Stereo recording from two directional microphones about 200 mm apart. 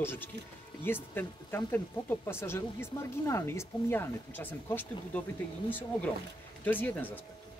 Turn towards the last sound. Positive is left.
turn(degrees=10)  # may be behind; listen again after turning